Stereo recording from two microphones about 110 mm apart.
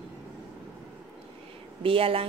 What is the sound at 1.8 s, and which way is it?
Speech, 55° right (ahead or behind).